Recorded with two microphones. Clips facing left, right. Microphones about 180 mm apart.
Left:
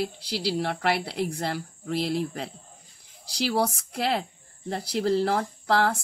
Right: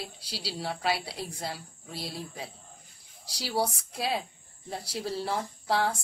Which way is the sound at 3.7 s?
70° left (ahead or behind).